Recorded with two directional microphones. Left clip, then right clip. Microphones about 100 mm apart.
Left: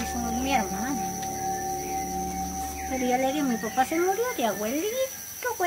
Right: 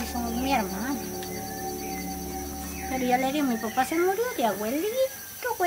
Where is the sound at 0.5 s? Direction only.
10° right (ahead or behind).